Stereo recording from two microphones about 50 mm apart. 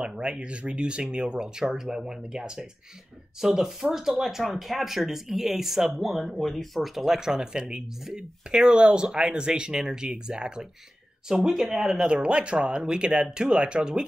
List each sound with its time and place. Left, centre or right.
0.0 s speech: centre